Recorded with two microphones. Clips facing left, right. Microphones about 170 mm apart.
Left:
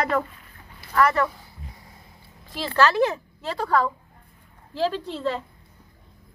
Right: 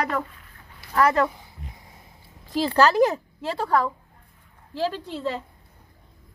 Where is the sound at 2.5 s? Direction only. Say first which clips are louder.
Right 2 dB; 40° right (ahead or behind).